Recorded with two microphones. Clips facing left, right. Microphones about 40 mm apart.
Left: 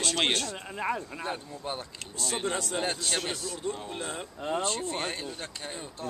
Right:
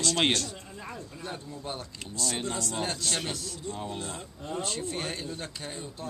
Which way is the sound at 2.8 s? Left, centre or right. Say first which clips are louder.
Left 1 dB; centre.